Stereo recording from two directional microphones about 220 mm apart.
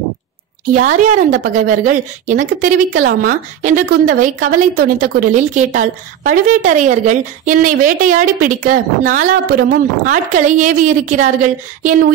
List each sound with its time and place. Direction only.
1.4 s a woman's voice: 35° right (ahead or behind)